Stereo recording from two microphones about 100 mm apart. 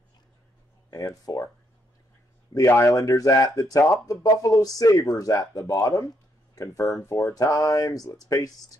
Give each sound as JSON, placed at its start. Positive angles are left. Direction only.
{"t": 0.8, "sound": "speech", "side_deg": 35}
{"t": 2.5, "sound": "speech", "side_deg": 30}